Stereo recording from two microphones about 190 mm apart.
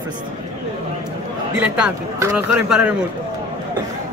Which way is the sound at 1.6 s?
5° right (ahead or behind).